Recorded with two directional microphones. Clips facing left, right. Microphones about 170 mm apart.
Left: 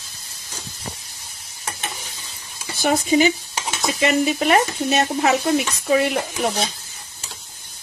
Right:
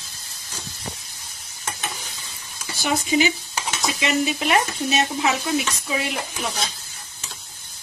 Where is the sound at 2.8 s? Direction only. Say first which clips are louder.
Left 4 dB; 45° left (ahead or behind).